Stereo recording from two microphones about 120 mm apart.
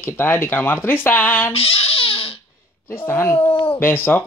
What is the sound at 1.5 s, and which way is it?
Crying, 55° left (ahead or behind).